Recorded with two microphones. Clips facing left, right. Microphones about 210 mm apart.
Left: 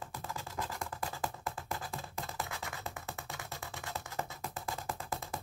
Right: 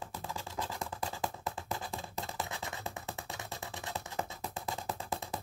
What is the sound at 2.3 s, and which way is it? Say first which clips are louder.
Scratch: right 1 dB; 20° right (ahead or behind).